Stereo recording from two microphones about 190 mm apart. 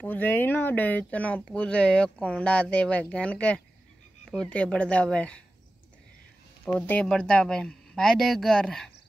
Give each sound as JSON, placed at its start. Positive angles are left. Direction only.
{"t": 0.0, "sound": "speech", "side_deg": 10}
{"t": 6.6, "sound": "speech", "side_deg": 5}